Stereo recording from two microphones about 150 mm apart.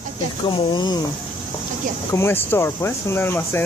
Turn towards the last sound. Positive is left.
turn(degrees=15)  # may be behind; listen again after turning